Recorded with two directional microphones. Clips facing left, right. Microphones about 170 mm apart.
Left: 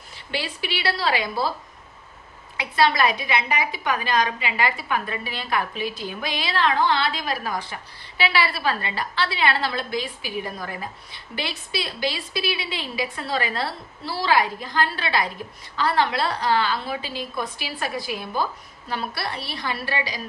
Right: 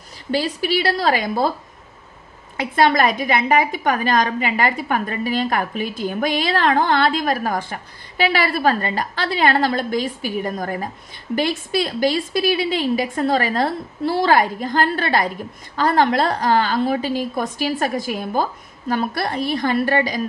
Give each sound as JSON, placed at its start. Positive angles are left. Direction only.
{"t": 0.3, "sound": "a woman's voice", "side_deg": -40}
{"t": 2.5, "sound": "a woman's voice", "side_deg": -50}